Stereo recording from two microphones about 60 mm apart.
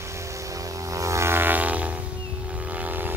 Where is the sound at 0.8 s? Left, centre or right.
Right.